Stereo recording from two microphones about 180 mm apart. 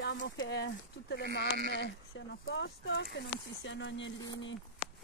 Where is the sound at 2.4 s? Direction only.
90° left.